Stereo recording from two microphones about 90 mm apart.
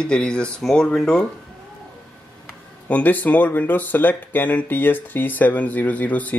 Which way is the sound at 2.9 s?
15° left (ahead or behind).